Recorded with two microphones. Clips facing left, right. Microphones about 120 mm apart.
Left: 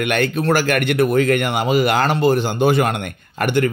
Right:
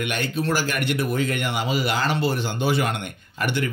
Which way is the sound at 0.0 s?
60° left (ahead or behind).